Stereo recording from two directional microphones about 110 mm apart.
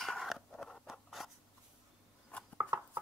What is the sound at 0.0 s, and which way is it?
Patter, centre (ahead or behind).